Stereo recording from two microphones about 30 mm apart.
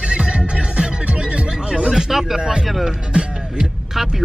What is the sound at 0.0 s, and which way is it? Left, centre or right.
Music, right.